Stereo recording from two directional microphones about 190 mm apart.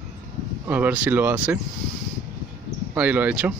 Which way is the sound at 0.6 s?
10° right (ahead or behind).